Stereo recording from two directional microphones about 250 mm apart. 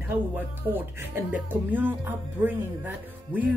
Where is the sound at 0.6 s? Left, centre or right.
Centre.